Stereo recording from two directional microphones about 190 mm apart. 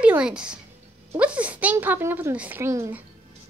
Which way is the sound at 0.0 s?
5° right (ahead or behind).